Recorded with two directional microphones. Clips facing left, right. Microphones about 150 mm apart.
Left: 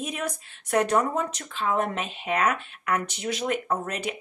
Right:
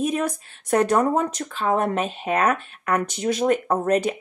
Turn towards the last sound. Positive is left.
turn(degrees=-40)  # may be behind; listen again after turning